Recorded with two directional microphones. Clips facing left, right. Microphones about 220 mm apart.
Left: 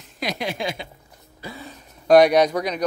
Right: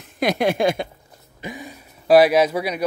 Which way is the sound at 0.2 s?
55° right (ahead or behind).